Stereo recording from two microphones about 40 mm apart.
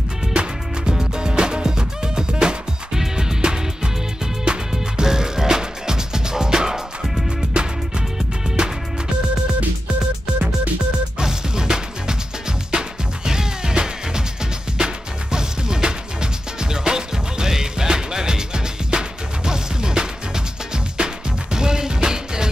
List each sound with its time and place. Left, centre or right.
0.3 s music: right
11.1 s music: centre
15.3 s music: centre